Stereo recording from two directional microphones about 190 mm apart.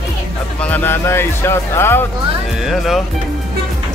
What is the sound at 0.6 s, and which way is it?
Speech, 10° left (ahead or behind).